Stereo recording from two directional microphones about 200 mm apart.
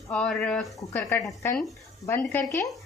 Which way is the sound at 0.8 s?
10° left (ahead or behind).